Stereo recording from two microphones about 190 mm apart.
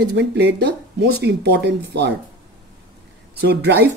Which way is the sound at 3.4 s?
60° right (ahead or behind).